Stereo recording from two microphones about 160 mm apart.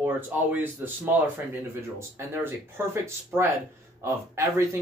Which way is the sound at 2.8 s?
15° right (ahead or behind).